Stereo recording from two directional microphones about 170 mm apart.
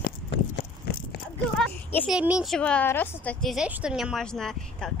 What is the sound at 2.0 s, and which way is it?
Speech, 5° right (ahead or behind).